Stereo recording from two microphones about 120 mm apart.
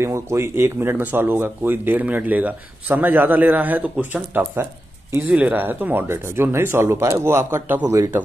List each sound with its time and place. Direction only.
0.0 s speech: 25° right (ahead or behind)